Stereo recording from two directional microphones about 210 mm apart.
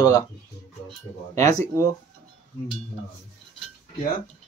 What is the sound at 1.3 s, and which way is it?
Speech, 15° left (ahead or behind).